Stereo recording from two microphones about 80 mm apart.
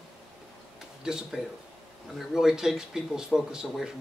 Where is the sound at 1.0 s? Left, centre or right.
Centre.